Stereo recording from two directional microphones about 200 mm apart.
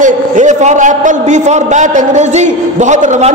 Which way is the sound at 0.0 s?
35° right (ahead or behind).